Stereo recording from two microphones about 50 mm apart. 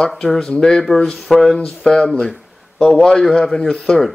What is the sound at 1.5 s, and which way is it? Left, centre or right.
Speech, centre.